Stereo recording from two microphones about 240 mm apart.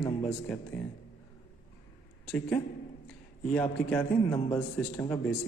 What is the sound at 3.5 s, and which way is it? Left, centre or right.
A man's voice, centre.